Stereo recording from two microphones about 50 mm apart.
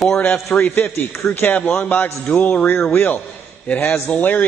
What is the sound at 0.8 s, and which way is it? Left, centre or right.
A man's voice, left.